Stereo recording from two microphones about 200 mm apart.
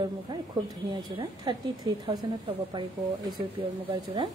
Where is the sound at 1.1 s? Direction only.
20° right (ahead or behind).